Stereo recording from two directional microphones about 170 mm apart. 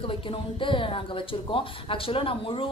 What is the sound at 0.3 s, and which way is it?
Speech, 30° left (ahead or behind).